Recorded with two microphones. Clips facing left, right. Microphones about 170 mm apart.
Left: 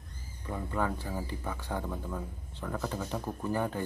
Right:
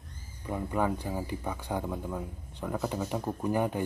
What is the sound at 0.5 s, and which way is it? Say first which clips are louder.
Speech: right 3 dB; 15° right (ahead or behind).